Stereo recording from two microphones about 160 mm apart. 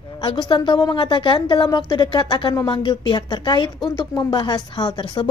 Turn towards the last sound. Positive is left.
turn(degrees=30)  # may be behind; listen again after turning